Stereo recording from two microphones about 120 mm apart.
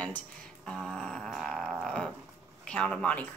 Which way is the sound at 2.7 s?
5° left (ahead or behind).